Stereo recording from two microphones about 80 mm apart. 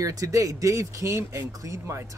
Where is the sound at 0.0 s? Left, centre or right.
Right.